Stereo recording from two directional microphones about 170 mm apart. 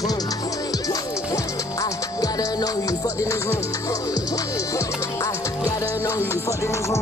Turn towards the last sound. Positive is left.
turn(degrees=15)  # may be behind; listen again after turning